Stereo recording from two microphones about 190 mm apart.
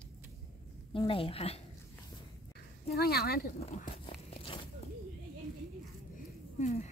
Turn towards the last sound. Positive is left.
turn(degrees=40)  # may be behind; listen again after turning